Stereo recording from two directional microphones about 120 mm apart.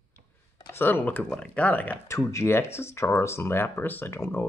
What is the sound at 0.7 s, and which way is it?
Speech, 15° left (ahead or behind).